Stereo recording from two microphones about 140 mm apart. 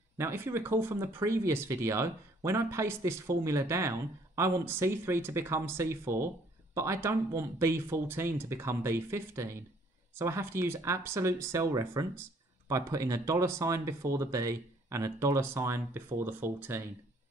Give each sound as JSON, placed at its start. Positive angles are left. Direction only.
{"t": 0.2, "sound": "speech", "side_deg": -20}